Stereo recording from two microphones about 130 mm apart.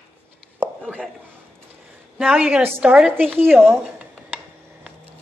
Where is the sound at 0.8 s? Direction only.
5° left (ahead or behind).